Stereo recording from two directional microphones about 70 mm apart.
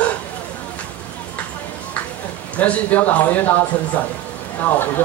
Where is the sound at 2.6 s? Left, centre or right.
Left.